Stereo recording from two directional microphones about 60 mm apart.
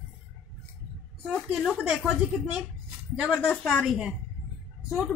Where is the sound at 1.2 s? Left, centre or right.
Centre.